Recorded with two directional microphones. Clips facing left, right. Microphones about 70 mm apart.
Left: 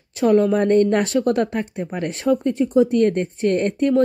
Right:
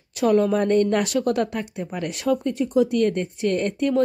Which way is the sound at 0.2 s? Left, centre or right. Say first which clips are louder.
Left 3 dB; left.